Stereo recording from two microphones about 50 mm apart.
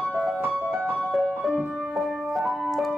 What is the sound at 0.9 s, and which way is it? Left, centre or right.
Piano, centre.